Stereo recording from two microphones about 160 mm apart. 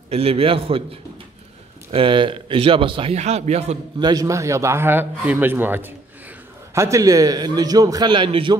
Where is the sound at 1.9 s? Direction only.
30° right (ahead or behind).